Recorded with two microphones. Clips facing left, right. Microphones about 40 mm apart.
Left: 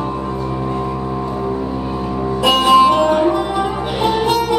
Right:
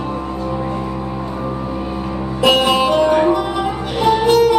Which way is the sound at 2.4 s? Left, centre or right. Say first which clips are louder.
Left 3 dB; centre.